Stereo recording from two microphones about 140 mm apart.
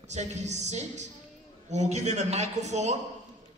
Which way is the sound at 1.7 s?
55° right (ahead or behind).